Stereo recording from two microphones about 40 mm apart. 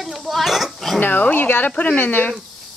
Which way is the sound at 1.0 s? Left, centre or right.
Left.